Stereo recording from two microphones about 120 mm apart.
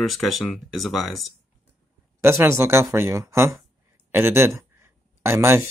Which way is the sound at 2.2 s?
20° right (ahead or behind).